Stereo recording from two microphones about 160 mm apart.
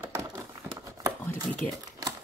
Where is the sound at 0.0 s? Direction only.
15° right (ahead or behind).